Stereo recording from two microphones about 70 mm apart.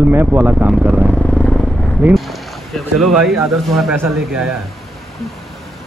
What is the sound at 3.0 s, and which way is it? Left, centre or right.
Speech, centre.